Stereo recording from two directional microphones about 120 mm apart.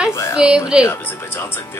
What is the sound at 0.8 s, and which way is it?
Speech, 20° left (ahead or behind).